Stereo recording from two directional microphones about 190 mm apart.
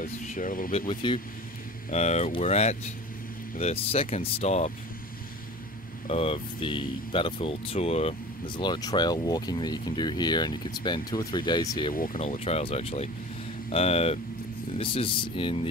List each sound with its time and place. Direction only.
0.0 s speech: 45° left (ahead or behind)
0.7 s speech: 25° left (ahead or behind)
6.0 s speech: 30° left (ahead or behind)
11.9 s speech: 45° left (ahead or behind)
12.2 s speech: 35° left (ahead or behind)